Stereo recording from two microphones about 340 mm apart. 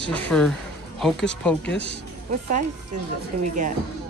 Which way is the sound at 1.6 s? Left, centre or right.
Left.